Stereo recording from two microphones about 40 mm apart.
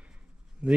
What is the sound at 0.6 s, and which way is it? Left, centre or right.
Speech, right.